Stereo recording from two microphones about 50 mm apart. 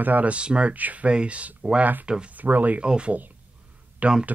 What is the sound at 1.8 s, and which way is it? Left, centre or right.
Speech, right.